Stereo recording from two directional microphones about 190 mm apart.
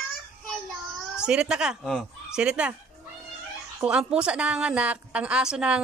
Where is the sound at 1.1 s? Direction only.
5° right (ahead or behind).